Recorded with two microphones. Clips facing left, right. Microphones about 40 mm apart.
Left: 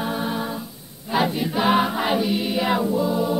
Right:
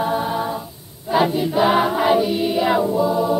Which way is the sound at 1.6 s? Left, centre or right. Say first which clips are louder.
Right 3 dB; centre.